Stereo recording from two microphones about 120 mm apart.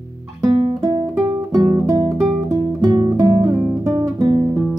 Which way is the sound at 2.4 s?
30° right (ahead or behind).